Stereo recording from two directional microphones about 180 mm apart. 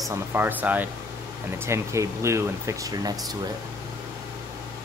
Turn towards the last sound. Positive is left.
turn(degrees=-20)  # may be behind; listen again after turning